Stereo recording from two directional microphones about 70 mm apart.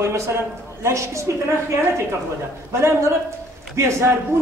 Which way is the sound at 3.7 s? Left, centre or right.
Right.